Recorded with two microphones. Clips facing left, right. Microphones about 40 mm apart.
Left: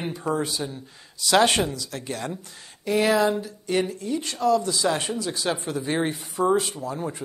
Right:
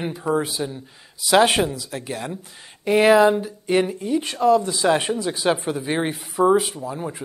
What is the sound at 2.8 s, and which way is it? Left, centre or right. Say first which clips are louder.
Speech: right 6 dB; right.